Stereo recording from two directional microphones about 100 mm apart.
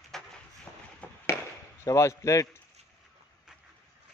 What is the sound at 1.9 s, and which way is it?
Speech, 30° left (ahead or behind).